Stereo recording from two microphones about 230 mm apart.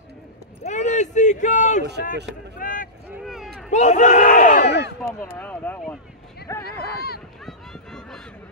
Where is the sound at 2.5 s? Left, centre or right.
Left.